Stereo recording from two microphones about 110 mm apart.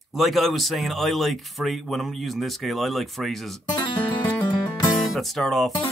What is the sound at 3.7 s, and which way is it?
Music, 45° left (ahead or behind).